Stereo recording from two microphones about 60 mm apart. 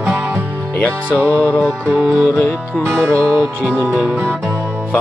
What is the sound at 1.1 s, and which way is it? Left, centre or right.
Music, left.